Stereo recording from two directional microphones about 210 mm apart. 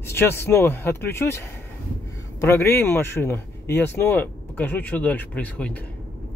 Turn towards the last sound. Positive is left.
turn(degrees=5)  # may be behind; listen again after turning